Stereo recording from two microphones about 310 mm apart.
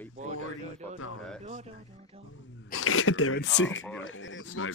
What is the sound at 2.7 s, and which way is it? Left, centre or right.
Speech, left.